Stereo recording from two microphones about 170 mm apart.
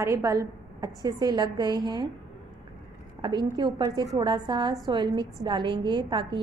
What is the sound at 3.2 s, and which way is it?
A woman's voice, 25° right (ahead or behind).